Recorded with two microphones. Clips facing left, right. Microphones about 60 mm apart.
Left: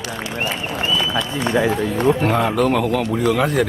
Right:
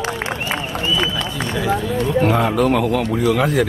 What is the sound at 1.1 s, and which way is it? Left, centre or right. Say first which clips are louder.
Speech: left 3 dB; left.